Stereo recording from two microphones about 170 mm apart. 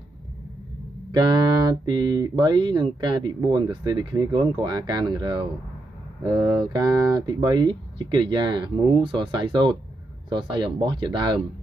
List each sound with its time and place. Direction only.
1.1 s speech: 25° right (ahead or behind)